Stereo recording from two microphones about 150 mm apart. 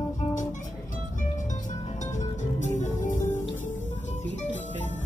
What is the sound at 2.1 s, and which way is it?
Music, 55° left (ahead or behind).